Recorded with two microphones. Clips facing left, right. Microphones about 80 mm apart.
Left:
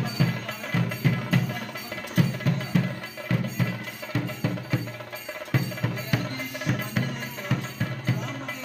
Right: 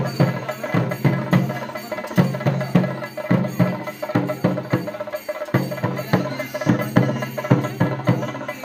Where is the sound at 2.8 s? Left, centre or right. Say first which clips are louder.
Right 7 dB; right.